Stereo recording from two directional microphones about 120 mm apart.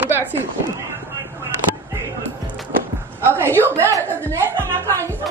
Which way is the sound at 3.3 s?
20° right (ahead or behind).